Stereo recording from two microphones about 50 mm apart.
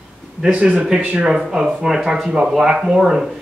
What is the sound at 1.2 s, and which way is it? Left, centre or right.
A man's voice, centre.